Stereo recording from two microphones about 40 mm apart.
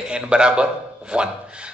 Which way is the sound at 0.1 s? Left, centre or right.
Right.